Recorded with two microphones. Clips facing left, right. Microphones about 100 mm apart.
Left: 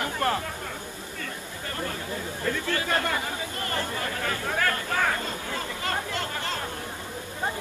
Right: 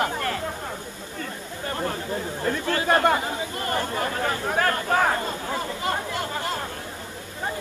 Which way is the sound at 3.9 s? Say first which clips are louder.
Right 4 dB; 30° right (ahead or behind).